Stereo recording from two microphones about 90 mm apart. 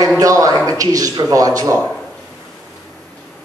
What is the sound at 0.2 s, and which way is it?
A man's voice, 40° right (ahead or behind).